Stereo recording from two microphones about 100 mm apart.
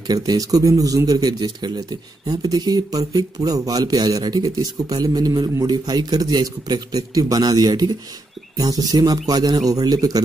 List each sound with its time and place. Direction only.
0.0 s speech: 40° right (ahead or behind)